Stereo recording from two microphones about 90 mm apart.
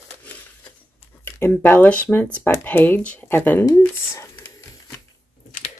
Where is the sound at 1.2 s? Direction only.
20° left (ahead or behind).